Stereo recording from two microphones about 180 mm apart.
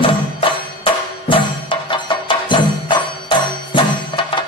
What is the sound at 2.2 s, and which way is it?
Music, 25° left (ahead or behind).